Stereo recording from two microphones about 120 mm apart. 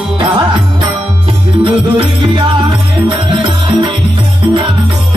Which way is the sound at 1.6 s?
45° right (ahead or behind).